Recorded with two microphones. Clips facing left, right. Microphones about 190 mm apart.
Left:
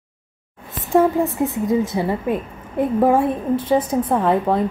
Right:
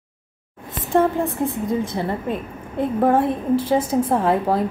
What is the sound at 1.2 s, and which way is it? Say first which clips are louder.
A woman's voice: left 3 dB; 15° left (ahead or behind).